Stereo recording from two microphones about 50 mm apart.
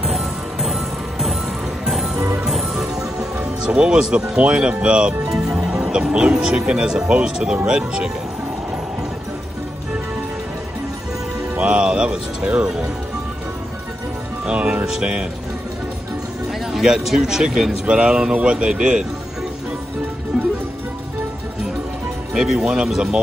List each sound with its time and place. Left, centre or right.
0.0 s music: centre
3.6 s speech: centre
11.5 s speech: right
14.4 s speech: centre
17.0 s speech: centre
17.8 s speech: right
22.3 s speech: centre